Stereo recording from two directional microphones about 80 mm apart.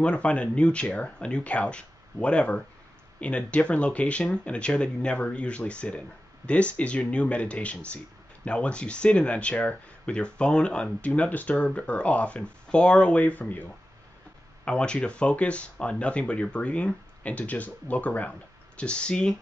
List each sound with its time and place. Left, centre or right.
0.0 s speech: centre